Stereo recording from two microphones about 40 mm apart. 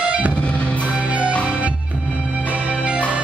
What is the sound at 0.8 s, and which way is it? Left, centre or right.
Music, right.